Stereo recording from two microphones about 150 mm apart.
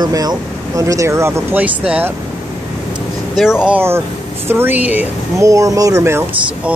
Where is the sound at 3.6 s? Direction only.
10° right (ahead or behind).